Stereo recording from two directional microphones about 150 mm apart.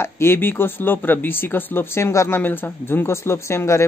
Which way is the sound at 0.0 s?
15° left (ahead or behind).